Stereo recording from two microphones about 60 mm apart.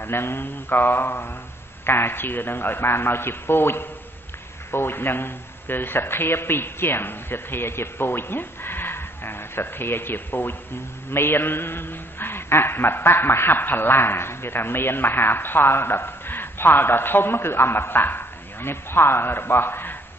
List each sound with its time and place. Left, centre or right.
0.0 s a man's voice: left